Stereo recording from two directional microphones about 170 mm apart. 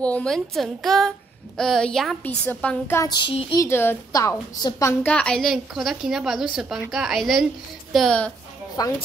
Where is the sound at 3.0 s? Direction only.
25° left (ahead or behind).